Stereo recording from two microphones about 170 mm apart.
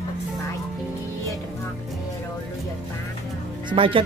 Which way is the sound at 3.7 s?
30° right (ahead or behind).